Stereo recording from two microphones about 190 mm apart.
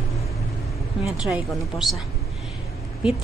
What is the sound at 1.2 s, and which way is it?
Speech, centre (ahead or behind).